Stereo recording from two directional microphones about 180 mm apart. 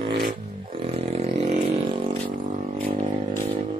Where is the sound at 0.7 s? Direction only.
35° right (ahead or behind).